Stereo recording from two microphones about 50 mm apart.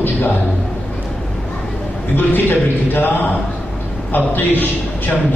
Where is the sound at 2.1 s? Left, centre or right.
Left.